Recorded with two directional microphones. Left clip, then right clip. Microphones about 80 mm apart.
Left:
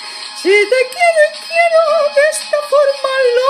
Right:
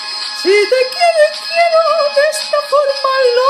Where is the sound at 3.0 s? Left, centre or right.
Left.